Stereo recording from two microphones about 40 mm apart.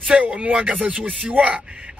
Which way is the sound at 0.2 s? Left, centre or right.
Right.